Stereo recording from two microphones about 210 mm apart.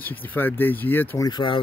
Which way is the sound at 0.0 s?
10° left (ahead or behind).